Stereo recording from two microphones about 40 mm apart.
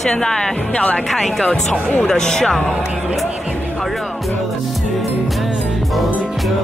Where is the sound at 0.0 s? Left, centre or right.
Centre.